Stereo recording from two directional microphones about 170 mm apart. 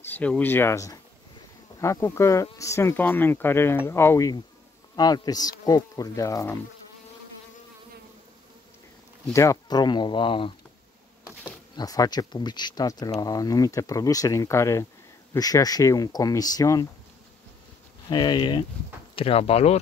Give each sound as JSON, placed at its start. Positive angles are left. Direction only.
{"t": 0.0, "sound": "speech", "side_deg": 10}
{"t": 9.3, "sound": "speech", "side_deg": 20}
{"t": 11.2, "sound": "speech", "side_deg": 20}
{"t": 18.1, "sound": "speech", "side_deg": 25}